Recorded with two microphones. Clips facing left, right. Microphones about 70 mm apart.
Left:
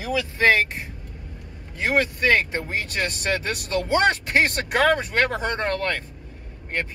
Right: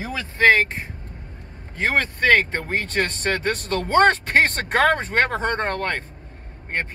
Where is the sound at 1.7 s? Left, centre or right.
Right.